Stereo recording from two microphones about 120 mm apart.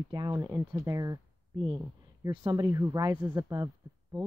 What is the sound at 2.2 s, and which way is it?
Speech, 30° right (ahead or behind).